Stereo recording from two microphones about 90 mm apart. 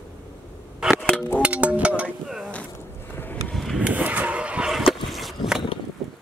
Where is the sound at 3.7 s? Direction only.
15° right (ahead or behind).